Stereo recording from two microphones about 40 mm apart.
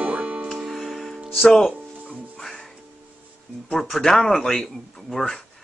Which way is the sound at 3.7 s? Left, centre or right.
Centre.